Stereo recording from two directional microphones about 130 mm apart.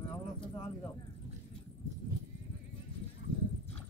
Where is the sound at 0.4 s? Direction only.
30° left (ahead or behind).